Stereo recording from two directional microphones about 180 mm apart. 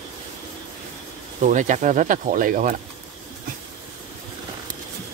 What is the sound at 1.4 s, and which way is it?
Speech, 45° right (ahead or behind).